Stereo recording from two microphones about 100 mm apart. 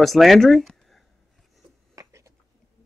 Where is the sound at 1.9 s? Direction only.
30° right (ahead or behind).